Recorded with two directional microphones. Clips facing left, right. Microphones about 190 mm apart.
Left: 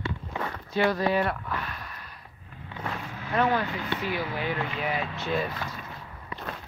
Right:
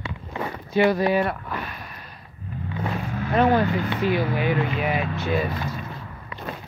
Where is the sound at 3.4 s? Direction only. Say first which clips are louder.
Right 6 dB; 50° right (ahead or behind).